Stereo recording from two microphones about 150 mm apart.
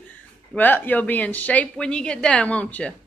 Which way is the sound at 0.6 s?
10° left (ahead or behind).